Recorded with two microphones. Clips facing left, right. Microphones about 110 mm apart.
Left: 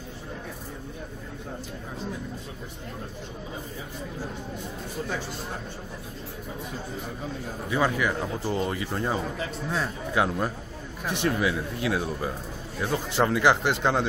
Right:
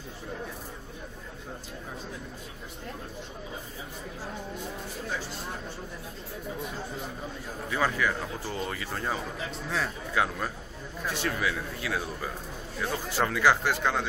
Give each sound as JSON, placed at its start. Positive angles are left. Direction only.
{"t": 7.7, "sound": "speech", "side_deg": 15}